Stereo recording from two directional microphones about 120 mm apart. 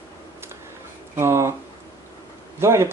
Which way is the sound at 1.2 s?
25° right (ahead or behind).